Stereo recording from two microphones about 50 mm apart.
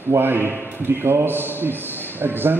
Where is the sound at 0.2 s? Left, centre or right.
Right.